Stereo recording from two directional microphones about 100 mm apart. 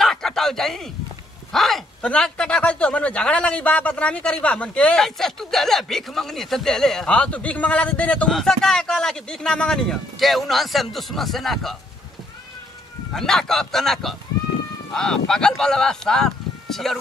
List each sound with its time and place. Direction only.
0.0 s a sound: 5° left (ahead or behind)
1.5 s speech: 5° left (ahead or behind)
13.1 s speech: 5° left (ahead or behind)